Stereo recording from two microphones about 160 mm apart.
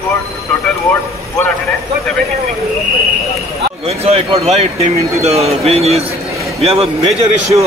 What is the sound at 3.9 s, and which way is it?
Speech, 40° right (ahead or behind).